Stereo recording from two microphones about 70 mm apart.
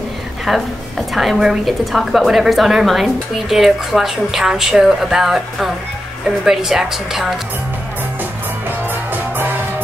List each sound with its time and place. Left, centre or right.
0.5 s a woman's voice: centre
8.6 s music: right